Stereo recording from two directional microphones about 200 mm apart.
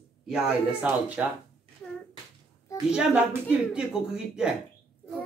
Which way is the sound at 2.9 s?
5° right (ahead or behind).